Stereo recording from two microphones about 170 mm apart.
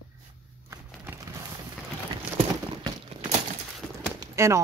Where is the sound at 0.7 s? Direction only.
15° right (ahead or behind).